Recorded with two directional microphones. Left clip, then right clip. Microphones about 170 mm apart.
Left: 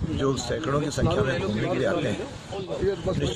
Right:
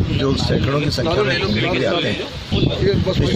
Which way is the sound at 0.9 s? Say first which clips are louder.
Right 7 dB; 30° left (ahead or behind).